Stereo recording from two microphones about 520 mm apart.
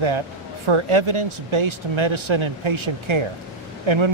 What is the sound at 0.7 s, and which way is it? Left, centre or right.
Speech, right.